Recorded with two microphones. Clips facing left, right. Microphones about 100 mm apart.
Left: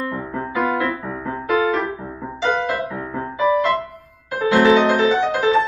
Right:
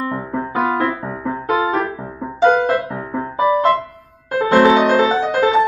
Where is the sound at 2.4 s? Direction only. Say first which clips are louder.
Right 7 dB; 45° right (ahead or behind).